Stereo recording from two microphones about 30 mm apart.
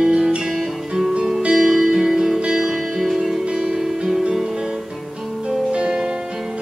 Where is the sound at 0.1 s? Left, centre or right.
Right.